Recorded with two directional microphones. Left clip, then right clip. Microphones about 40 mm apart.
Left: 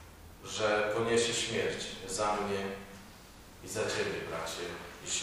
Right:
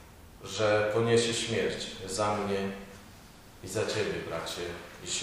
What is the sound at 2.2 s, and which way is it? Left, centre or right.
Speech, centre.